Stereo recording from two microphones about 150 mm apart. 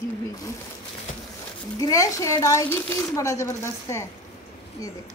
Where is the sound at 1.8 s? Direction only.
25° left (ahead or behind).